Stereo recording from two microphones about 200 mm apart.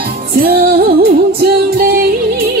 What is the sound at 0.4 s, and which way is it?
Music, 50° right (ahead or behind).